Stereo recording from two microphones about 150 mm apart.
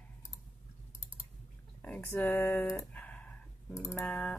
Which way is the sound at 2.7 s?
10° left (ahead or behind).